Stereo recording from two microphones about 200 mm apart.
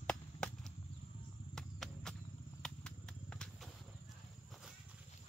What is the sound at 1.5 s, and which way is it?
Horse, centre (ahead or behind).